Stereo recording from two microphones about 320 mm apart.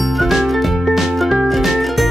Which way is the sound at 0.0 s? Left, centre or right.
Centre.